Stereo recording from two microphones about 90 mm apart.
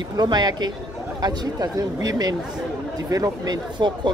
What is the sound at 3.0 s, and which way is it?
Speech, 40° right (ahead or behind).